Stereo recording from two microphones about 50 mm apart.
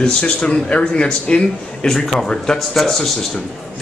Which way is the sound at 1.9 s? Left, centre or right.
Centre.